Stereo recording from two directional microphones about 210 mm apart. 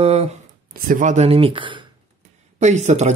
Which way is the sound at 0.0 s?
30° right (ahead or behind).